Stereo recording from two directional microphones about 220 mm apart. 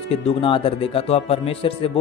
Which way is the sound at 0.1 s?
25° left (ahead or behind).